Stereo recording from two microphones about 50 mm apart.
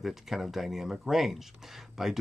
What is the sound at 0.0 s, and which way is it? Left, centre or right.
Speech, centre.